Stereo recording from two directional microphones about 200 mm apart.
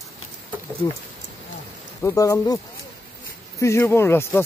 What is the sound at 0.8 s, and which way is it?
Speech, 15° left (ahead or behind).